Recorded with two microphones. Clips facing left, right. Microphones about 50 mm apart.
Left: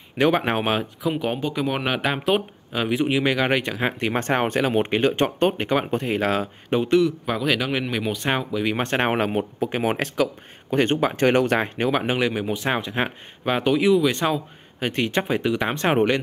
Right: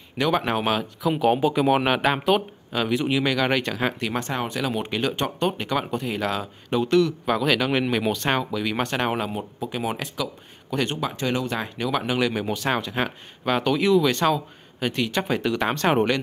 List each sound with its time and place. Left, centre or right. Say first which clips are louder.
0.2 s speech: left 2 dB; left
1.0 s speech: right 7 dB; centre
2.7 s speech: left 1 dB; centre
4.3 s speech: left 5 dB; left
6.8 s speech: left 1 dB; centre
7.2 s speech: right 1 dB; centre
8.2 s speech: even; centre
8.8 s speech: left 3 dB; left
10.7 s speech: left 5 dB; left
12.0 s a man's voice: left 1 dB; left
14.9 s speech: left 2 dB; left
15.2 s speech: left 1 dB; centre